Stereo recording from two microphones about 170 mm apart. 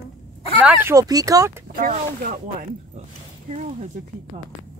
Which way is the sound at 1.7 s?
55° right (ahead or behind).